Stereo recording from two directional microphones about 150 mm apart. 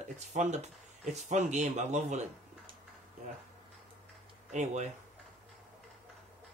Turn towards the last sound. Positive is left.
turn(degrees=-50)  # may be behind; listen again after turning